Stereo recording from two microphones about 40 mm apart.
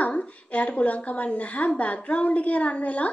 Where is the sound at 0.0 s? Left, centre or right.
Left.